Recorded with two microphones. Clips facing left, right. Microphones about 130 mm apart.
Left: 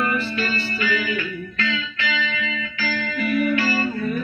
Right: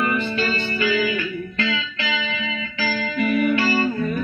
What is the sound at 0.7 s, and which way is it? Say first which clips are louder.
Music: right 3 dB; 30° right (ahead or behind).